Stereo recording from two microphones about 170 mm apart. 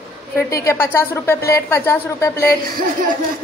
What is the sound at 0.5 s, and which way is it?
Speech, 15° left (ahead or behind).